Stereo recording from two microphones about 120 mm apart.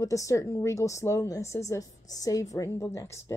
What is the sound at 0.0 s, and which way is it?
Speech, 25° left (ahead or behind).